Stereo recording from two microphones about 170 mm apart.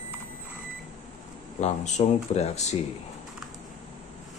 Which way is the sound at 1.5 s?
45° left (ahead or behind).